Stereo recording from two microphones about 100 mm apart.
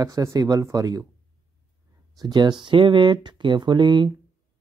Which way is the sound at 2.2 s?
45° right (ahead or behind).